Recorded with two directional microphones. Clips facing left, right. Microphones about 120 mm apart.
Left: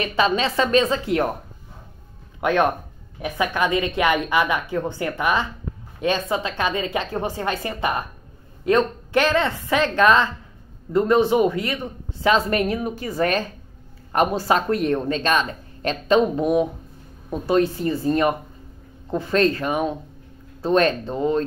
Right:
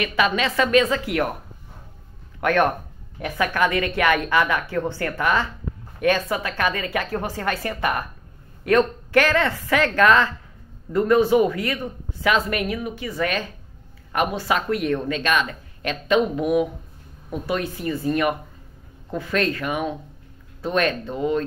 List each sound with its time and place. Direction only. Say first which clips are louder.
0.0 s speech: left 1 dB; 30° left (ahead or behind)
2.4 s speech: even; 20° left (ahead or behind)